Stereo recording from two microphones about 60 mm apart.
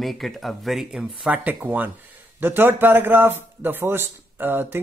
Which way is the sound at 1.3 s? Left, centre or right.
Right.